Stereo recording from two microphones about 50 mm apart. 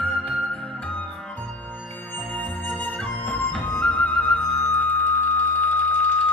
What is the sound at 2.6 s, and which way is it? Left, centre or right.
Music, centre.